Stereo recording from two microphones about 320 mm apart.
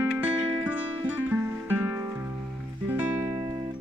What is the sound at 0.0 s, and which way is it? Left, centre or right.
Music, centre.